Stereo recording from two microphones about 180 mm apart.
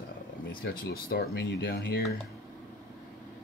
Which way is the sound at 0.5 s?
55° left (ahead or behind).